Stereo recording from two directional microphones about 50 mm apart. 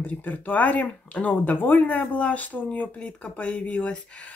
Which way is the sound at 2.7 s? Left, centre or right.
Left.